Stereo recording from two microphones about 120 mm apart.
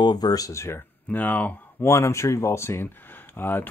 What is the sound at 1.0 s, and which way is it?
Speech, 15° left (ahead or behind).